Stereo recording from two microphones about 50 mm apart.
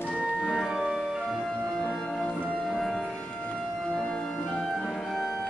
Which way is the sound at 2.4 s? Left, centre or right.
Centre.